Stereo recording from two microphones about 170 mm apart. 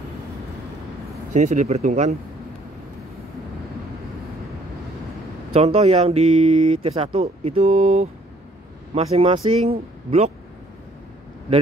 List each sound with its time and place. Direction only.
1.3 s speech: 45° right (ahead or behind)
5.5 s speech: 35° right (ahead or behind)